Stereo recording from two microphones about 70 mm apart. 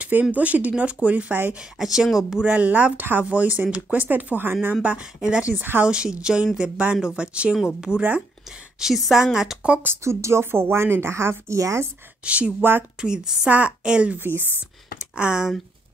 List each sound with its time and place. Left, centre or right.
0.0 s speech: right
1.6 s speech: centre; by 4.7 s right
4.8 s speech: centre
8.7 s speech: centre
10.0 s speech: right
12.3 s speech: centre
14.1 s speech: right
15.1 s speech: centre